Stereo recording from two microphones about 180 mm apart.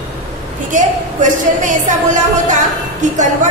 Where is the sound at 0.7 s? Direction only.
45° right (ahead or behind).